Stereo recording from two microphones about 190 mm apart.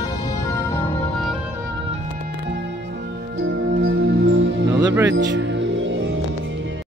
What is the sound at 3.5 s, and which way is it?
Music, 55° right (ahead or behind).